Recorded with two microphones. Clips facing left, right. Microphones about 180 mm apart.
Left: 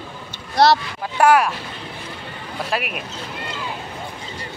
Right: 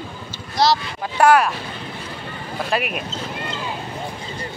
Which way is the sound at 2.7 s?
Centre (ahead or behind).